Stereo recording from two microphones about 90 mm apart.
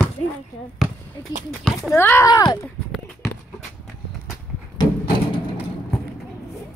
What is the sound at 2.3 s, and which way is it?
Speech, 50° left (ahead or behind).